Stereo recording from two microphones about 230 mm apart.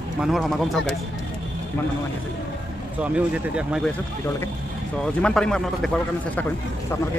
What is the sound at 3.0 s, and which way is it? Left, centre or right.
Speech, centre.